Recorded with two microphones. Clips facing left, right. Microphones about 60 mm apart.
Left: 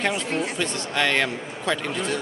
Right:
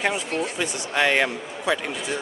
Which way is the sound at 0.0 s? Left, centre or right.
Centre.